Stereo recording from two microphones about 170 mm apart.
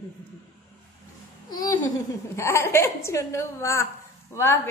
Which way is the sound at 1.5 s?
20° left (ahead or behind).